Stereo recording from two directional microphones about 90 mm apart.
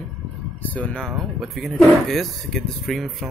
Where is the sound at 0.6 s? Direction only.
15° left (ahead or behind).